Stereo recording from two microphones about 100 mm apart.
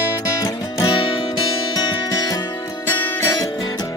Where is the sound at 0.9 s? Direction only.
60° left (ahead or behind).